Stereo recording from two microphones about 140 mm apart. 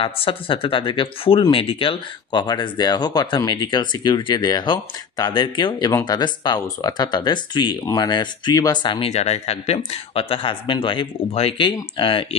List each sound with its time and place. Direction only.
0.0 s speech: 40° left (ahead or behind)
9.1 s speech: 50° left (ahead or behind)